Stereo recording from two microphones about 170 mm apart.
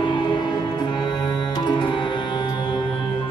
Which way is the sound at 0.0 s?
25° left (ahead or behind).